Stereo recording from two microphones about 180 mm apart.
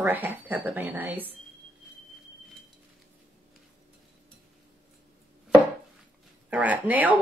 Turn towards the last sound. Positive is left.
turn(degrees=-10)  # may be behind; listen again after turning